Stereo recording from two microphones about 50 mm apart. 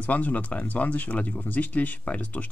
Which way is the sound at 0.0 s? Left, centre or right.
Left.